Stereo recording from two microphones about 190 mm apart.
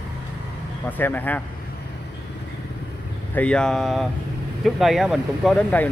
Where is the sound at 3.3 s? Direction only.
5° left (ahead or behind).